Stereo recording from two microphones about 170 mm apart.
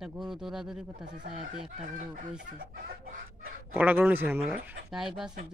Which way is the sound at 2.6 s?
55° right (ahead or behind).